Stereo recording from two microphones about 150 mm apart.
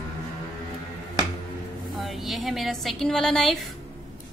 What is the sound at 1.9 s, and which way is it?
A woman's voice, centre (ahead or behind).